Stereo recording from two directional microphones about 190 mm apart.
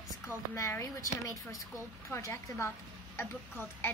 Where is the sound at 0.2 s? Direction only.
15° left (ahead or behind).